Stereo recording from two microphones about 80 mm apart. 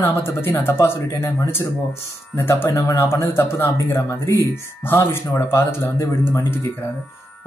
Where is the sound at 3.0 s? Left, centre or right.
Left.